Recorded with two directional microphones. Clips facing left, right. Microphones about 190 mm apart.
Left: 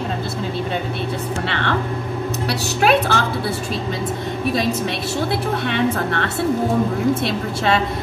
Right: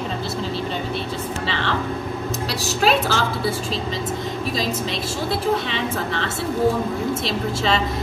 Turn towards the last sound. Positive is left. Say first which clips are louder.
# left 2 dB
turn(degrees=60)  # may be behind; listen again after turning